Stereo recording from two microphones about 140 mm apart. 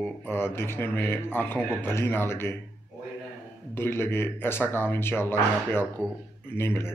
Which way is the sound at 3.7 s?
15° left (ahead or behind).